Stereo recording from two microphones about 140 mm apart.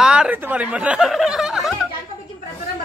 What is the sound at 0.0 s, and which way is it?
Speech, 5° right (ahead or behind).